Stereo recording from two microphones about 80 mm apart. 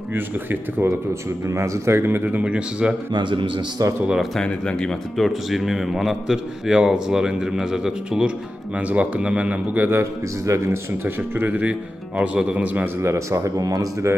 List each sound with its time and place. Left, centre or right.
0.1 s speech: right
1.5 s speech: right; by 3.0 s centre
3.1 s a man's voice: right
4.4 s speech: centre
9.8 s speech: right
13.0 s speech: right